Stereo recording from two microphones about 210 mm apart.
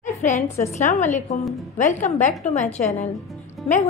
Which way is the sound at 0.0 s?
35° left (ahead or behind).